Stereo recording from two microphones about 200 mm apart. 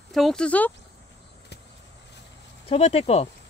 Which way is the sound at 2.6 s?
30° left (ahead or behind).